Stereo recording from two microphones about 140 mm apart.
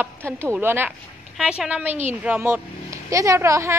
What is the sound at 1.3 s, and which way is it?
A woman's voice, 5° right (ahead or behind).